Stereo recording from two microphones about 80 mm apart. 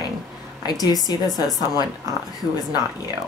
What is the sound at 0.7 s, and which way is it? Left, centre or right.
Speech, left.